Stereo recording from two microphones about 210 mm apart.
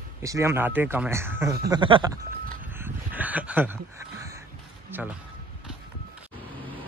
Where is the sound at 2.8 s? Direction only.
5° right (ahead or behind).